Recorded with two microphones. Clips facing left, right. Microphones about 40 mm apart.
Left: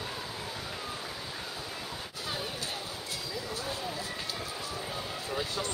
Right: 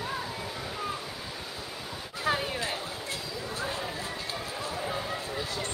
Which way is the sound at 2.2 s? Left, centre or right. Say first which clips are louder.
Right 9 dB; right.